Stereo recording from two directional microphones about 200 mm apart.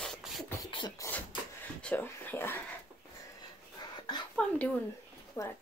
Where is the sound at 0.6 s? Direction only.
20° left (ahead or behind).